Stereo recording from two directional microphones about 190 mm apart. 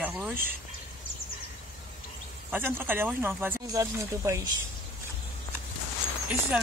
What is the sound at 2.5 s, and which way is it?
Speech, 10° right (ahead or behind).